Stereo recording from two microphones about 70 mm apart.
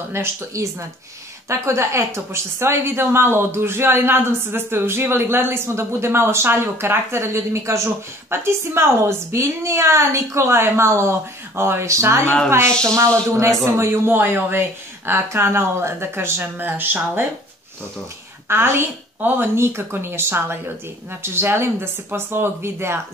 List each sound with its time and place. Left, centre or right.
0.5 s speech: right
18.5 s speech: right